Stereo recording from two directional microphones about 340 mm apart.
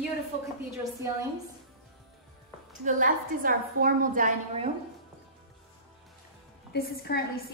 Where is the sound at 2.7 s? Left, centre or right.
Right.